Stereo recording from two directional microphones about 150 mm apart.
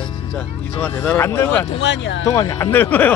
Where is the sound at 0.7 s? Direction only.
10° left (ahead or behind).